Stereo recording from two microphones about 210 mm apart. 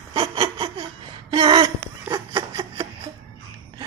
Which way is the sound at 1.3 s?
25° right (ahead or behind).